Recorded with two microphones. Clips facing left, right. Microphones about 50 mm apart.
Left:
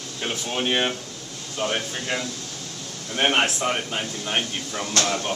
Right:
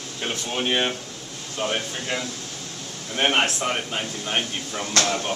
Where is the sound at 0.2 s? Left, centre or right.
Centre.